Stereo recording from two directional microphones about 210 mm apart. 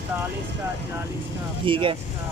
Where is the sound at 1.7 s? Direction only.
25° right (ahead or behind).